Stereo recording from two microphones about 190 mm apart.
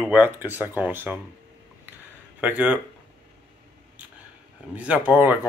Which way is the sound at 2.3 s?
5° right (ahead or behind).